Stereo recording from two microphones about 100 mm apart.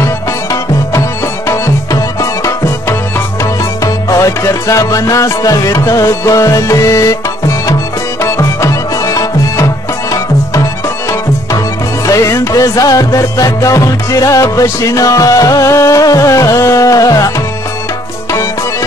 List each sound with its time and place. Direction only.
0.0 s music: 30° left (ahead or behind)
12.1 s music: 30° left (ahead or behind)